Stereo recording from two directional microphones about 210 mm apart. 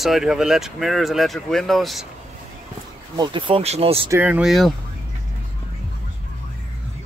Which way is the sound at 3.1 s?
20° right (ahead or behind).